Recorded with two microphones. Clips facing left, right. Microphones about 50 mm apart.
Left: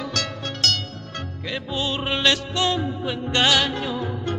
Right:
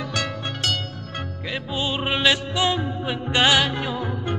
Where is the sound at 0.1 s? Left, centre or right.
Centre.